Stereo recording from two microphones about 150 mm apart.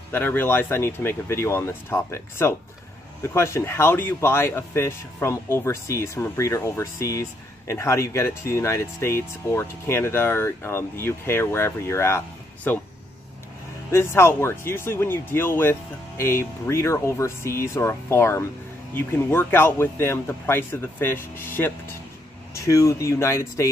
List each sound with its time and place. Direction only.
0.1 s speech: 15° left (ahead or behind)
13.9 s speech: 15° left (ahead or behind)